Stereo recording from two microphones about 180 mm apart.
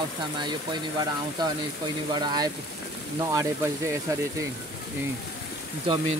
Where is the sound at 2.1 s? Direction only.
25° right (ahead or behind).